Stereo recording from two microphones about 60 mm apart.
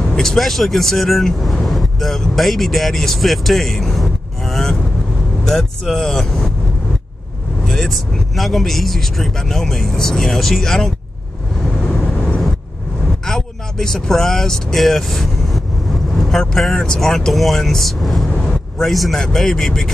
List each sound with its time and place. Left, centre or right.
0.1 s speech: centre
7.6 s speech: centre
11.9 s vehicle: left
13.2 s speech: centre